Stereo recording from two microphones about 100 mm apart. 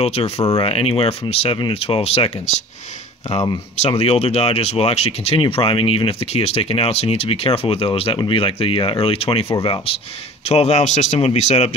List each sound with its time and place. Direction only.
0.0 s speech: 90° left
4.0 s speech: 90° left
9.6 s speech: 55° left (ahead or behind)
10.5 s speech: 90° left